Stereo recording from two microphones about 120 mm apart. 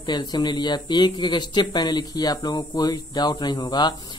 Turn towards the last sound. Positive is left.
turn(degrees=35)  # may be behind; listen again after turning